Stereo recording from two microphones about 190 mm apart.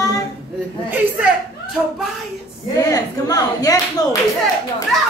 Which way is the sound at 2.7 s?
20° left (ahead or behind).